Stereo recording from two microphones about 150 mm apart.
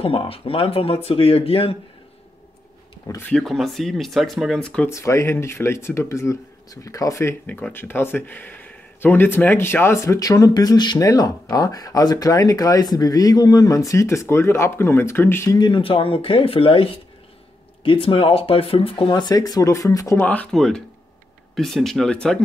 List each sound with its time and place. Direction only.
0.0 s speech: 40° left (ahead or behind)
3.1 s speech: 10° left (ahead or behind)
4.8 s speech: 20° left (ahead or behind)
20.2 s speech: 10° left (ahead or behind)